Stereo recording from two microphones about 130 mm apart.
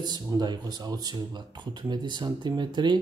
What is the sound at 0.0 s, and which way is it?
Speech, 35° right (ahead or behind).